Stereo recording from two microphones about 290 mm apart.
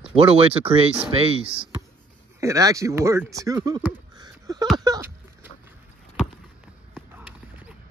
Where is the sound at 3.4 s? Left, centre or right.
Centre.